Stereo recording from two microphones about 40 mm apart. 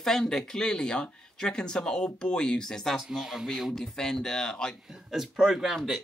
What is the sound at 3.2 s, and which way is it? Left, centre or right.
Speech, centre.